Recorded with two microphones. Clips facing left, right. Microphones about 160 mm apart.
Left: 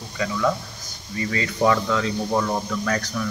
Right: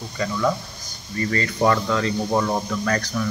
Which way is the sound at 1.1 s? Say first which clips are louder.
Right 2 dB; 5° left (ahead or behind).